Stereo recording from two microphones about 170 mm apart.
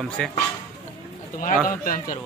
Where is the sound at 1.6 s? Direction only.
55° left (ahead or behind).